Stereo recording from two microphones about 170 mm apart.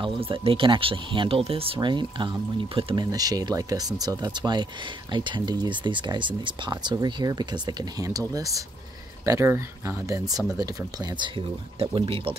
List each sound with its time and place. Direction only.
0.0 s speech: 30° right (ahead or behind)
3.1 s speech: 20° right (ahead or behind)